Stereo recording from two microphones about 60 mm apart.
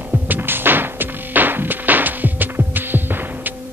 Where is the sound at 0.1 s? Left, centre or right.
Right.